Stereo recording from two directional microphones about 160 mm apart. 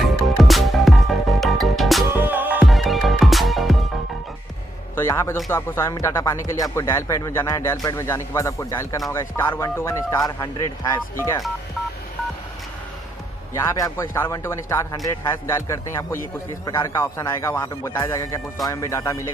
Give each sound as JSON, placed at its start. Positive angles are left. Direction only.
{"t": 0.0, "sound": "music", "side_deg": 0}
{"t": 2.1, "sound": "music", "side_deg": -10}
{"t": 2.6, "sound": "music", "side_deg": 0}
{"t": 4.9, "sound": "music", "side_deg": 15}
{"t": 5.5, "sound": "speech", "side_deg": 15}
{"t": 13.6, "sound": "a man's voice", "side_deg": 20}